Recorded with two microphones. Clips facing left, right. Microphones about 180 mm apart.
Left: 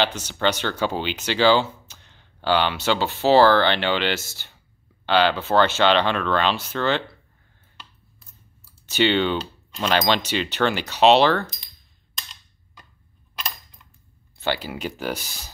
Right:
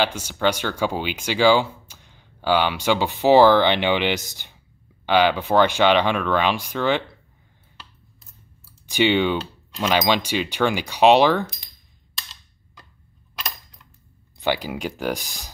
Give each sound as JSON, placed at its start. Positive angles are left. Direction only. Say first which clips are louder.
{"t": 0.0, "sound": "speech", "louder": "right 1 dB", "side_deg": -10}
{"t": 8.8, "sound": "speech", "louder": "right 1 dB", "side_deg": -10}
{"t": 14.4, "sound": "speech", "louder": "right 2 dB", "side_deg": -15}